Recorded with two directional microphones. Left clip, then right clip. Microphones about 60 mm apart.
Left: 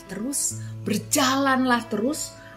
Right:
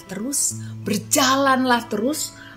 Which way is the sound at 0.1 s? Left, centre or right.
Right.